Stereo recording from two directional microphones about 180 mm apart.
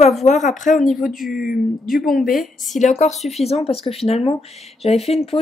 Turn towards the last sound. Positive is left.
turn(degrees=35)  # may be behind; listen again after turning